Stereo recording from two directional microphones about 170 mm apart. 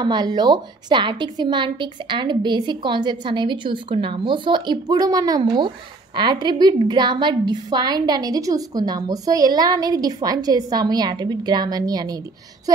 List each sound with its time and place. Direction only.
0.0 s a woman's voice: 25° right (ahead or behind)